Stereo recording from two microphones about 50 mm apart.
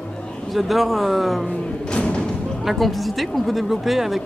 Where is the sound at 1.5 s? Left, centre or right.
Left.